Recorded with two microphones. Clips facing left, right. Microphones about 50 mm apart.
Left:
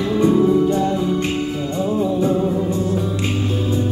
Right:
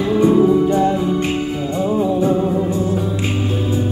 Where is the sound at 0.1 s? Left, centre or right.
Right.